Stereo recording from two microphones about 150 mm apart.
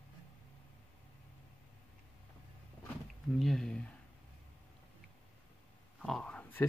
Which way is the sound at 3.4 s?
5° left (ahead or behind).